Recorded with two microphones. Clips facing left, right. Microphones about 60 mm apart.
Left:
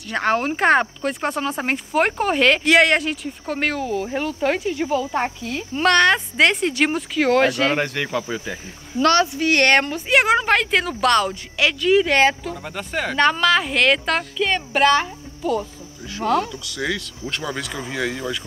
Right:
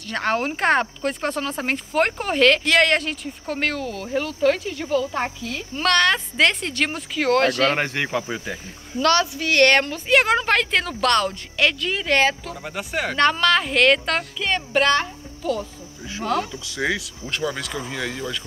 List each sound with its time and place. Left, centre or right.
0.1 s speech: centre
7.7 s speech: right
8.2 s speech: centre
9.0 s speech: left; by 15.6 s centre
16.6 s speech: right
17.0 s speech: centre